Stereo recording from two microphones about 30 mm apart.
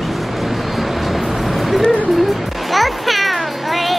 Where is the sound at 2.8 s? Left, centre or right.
Centre.